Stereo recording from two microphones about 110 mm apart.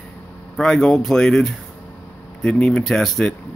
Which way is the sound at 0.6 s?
5° left (ahead or behind).